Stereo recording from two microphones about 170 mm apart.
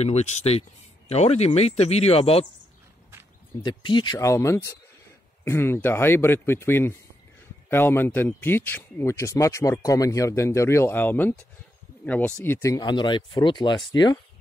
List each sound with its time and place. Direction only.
0.0 s speech: 40° left (ahead or behind)
3.6 s speech: 25° left (ahead or behind)